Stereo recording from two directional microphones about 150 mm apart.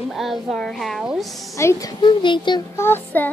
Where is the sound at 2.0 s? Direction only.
30° left (ahead or behind).